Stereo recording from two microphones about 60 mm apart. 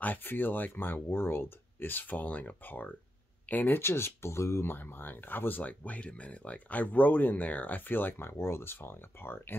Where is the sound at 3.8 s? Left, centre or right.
Left.